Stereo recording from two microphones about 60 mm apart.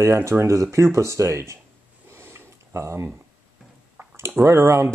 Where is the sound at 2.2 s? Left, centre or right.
Right.